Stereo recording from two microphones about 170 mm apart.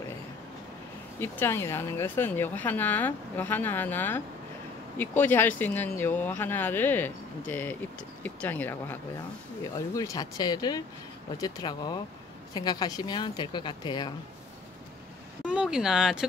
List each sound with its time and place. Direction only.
1.2 s a woman's voice: 15° left (ahead or behind)
15.4 s speech: 5° right (ahead or behind)